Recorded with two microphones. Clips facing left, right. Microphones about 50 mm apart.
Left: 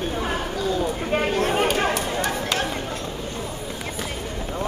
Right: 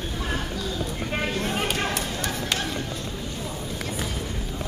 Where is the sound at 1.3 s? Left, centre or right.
Left.